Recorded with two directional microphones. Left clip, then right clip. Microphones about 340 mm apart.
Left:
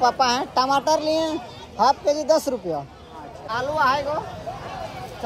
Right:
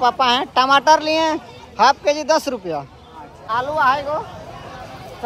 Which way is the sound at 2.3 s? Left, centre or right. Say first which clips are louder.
Right 2 dB; centre.